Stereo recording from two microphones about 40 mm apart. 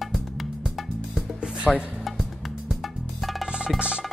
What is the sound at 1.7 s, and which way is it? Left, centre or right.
Speech, centre.